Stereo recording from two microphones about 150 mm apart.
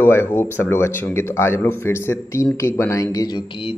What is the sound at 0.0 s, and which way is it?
Speech, 15° left (ahead or behind).